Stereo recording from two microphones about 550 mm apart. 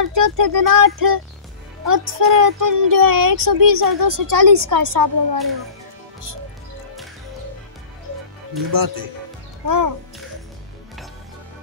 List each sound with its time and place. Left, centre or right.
0.0 s speech: right
8.7 s speech: right